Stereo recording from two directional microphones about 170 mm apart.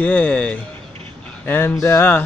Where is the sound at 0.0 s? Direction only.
10° left (ahead or behind).